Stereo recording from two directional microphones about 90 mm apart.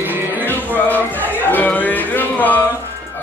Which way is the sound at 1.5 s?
20° left (ahead or behind).